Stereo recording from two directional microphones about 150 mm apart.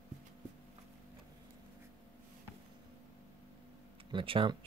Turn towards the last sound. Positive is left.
turn(degrees=-35)  # may be behind; listen again after turning